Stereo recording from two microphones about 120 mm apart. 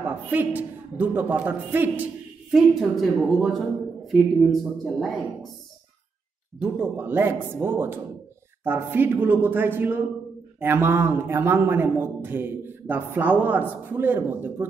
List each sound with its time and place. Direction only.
0.0 s a man's voice: 15° right (ahead or behind)
2.5 s speech: centre (ahead or behind)
6.6 s a man's voice: 10° right (ahead or behind)